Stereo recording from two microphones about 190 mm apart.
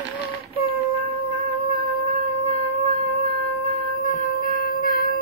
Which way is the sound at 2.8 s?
40° left (ahead or behind).